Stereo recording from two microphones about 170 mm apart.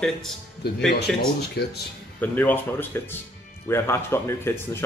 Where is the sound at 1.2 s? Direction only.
70° left (ahead or behind).